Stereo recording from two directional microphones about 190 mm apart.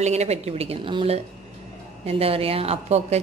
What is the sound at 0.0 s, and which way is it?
A woman's voice, 35° right (ahead or behind).